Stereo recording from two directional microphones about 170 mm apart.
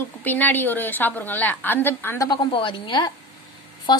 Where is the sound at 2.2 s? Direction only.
30° left (ahead or behind).